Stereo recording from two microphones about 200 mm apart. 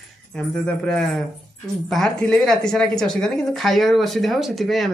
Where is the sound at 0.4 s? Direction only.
5° left (ahead or behind).